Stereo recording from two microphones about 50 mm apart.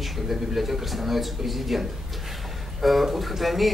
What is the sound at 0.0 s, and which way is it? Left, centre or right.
A man's voice, centre.